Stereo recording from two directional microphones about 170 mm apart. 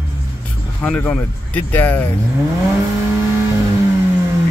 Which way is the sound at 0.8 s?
5° left (ahead or behind).